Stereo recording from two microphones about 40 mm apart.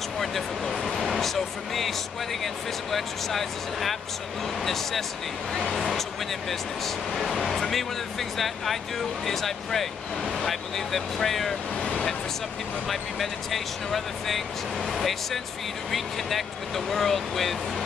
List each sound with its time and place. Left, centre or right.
0.2 s a sound: centre
2.4 s speech: centre
7.2 s speech: centre
12.8 s speech: centre